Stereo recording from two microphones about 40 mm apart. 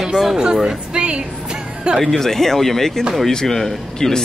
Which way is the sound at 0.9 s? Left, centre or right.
Right.